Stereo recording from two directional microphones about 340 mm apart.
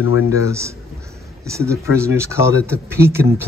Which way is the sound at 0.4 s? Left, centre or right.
Centre.